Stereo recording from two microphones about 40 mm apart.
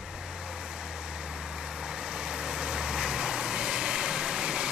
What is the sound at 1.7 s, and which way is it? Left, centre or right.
Vehicle, centre.